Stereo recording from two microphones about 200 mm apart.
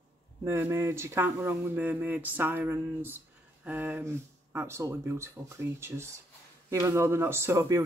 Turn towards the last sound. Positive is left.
turn(degrees=-15)  # may be behind; listen again after turning